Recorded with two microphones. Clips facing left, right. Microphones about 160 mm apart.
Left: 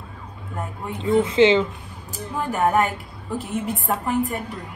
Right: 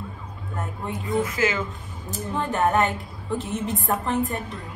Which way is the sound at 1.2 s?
25° left (ahead or behind).